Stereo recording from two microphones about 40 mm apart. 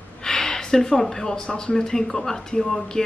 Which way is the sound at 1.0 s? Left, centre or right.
Centre.